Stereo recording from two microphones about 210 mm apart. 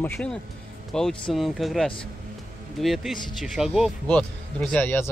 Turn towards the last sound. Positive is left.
turn(degrees=10)  # may be behind; listen again after turning